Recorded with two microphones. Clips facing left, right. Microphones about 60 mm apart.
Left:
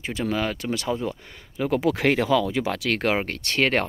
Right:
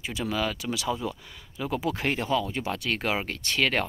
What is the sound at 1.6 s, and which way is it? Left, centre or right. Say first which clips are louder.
Speech: left 7 dB; left.